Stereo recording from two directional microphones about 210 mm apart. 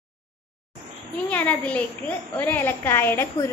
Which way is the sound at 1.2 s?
5° left (ahead or behind).